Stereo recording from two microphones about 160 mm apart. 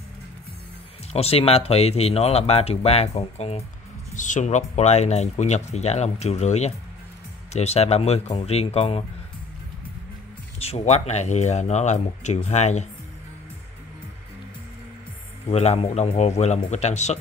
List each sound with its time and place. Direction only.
1.1 s speech: 40° left (ahead or behind)
4.1 s speech: 50° left (ahead or behind)
10.6 s speech: 40° left (ahead or behind)
15.4 s speech: 40° left (ahead or behind)